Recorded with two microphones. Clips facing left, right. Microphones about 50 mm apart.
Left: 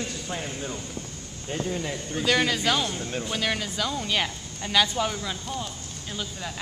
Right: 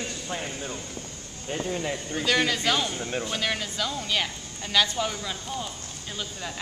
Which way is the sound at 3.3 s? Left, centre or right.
Centre.